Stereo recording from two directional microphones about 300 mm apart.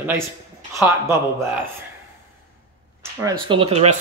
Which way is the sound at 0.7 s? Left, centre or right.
Centre.